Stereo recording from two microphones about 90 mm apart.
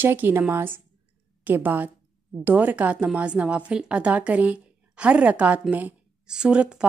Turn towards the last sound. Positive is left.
turn(degrees=-10)  # may be behind; listen again after turning